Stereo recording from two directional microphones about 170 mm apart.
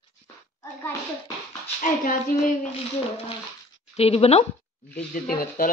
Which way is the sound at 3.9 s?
35° left (ahead or behind).